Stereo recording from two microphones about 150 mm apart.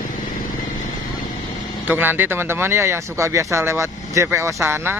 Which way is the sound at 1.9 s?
15° right (ahead or behind).